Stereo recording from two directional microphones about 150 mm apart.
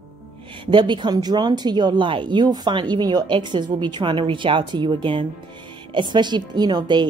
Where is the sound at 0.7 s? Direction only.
30° right (ahead or behind).